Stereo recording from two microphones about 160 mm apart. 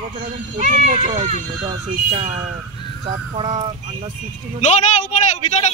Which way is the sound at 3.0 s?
30° right (ahead or behind).